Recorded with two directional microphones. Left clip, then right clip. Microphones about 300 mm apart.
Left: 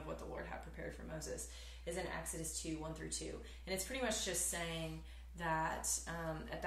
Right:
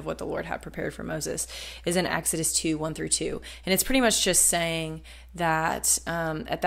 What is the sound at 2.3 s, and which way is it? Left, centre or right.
Speech, right.